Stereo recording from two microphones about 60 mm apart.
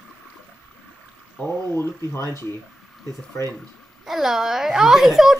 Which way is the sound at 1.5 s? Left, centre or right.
Left.